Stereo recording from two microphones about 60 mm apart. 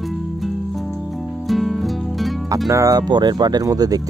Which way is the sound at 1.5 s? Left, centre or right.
Centre.